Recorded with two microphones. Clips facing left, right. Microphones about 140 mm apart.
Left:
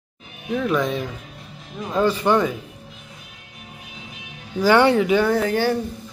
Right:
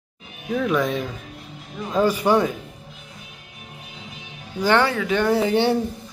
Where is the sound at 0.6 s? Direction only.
Centre (ahead or behind).